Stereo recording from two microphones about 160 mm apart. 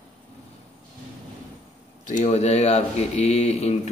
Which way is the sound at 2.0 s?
50° left (ahead or behind).